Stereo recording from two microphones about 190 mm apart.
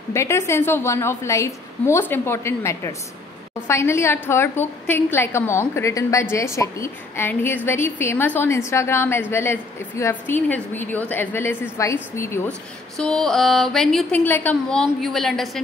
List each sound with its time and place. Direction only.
0.1 s a woman's voice: 15° left (ahead or behind)
12.9 s a woman's voice: centre (ahead or behind)